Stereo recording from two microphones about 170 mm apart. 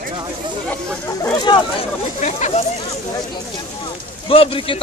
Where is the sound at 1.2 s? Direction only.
20° left (ahead or behind).